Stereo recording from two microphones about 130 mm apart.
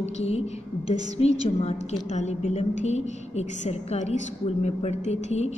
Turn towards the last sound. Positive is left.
turn(degrees=60)  # may be behind; listen again after turning